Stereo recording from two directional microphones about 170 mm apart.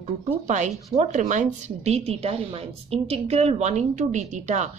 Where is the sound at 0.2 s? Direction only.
45° right (ahead or behind).